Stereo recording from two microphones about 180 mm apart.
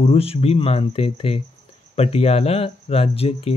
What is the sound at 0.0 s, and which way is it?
Speech, 35° left (ahead or behind).